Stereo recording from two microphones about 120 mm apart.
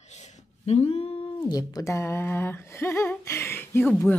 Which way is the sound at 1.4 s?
30° left (ahead or behind).